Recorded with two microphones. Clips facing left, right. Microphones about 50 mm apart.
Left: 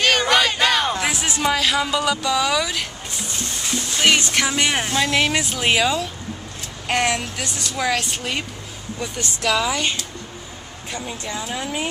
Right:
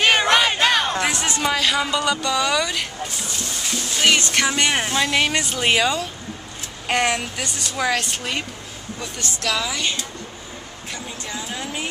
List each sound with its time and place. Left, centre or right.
0.0 s a sound: centre
0.9 s speech: centre
4.0 s speech: centre
9.7 s speech: left
11.3 s speech: centre